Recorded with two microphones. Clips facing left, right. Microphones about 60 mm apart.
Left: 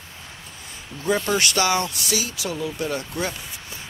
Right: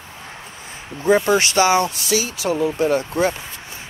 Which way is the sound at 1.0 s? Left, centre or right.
Right.